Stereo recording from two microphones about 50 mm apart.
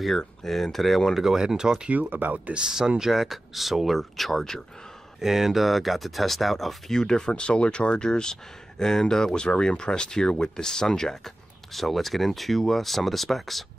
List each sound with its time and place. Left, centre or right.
0.4 s speech: centre
1.2 s speech: centre
2.0 s speech: right
2.6 s speech: centre
5.2 s speech: centre
7.0 s speech: centre